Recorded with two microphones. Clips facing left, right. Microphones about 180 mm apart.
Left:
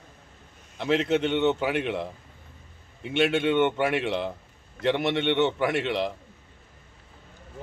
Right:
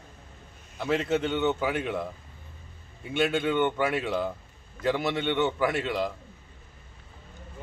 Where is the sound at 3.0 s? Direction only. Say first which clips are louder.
Left 3 dB; 75° left (ahead or behind).